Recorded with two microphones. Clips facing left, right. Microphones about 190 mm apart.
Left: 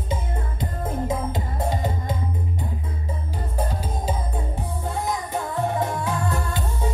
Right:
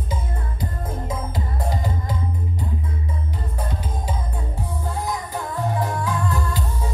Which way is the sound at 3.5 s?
30° left (ahead or behind).